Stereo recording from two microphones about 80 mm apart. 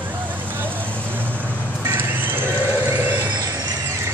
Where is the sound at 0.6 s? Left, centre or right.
Right.